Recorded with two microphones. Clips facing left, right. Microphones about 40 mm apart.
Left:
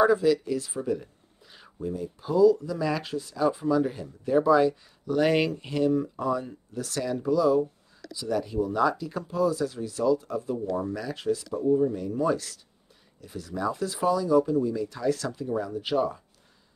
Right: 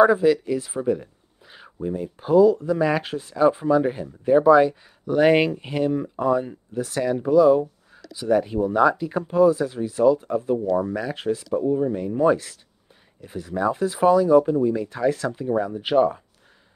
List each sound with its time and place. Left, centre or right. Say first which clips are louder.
0.0 s speech: right 5 dB; right